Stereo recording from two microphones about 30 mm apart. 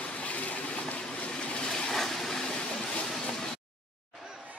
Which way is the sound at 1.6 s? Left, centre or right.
Left.